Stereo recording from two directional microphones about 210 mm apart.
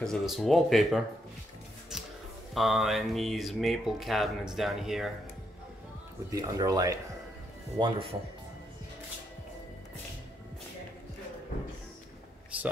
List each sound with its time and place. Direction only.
0.0 s speech: centre (ahead or behind)
2.5 s speech: centre (ahead or behind)
6.3 s speech: 15° right (ahead or behind)